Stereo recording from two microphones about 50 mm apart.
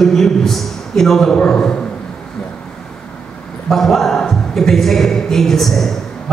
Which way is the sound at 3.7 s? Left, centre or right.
Centre.